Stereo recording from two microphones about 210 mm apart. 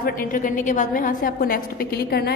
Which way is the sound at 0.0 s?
40° left (ahead or behind).